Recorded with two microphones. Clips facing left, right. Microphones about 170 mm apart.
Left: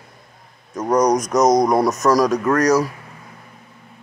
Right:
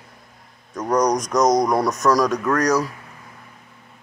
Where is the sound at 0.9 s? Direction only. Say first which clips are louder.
Left 3 dB; 5° left (ahead or behind).